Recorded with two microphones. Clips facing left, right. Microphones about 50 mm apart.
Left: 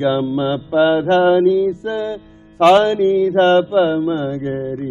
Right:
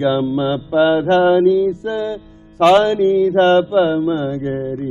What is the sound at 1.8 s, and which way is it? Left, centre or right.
Music, centre.